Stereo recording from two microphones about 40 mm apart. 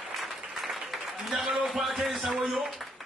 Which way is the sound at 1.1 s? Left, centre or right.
Centre.